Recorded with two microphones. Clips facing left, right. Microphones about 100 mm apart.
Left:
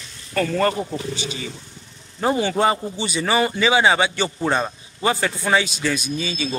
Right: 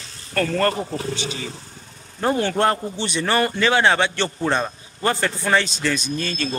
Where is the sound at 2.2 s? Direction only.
5° left (ahead or behind).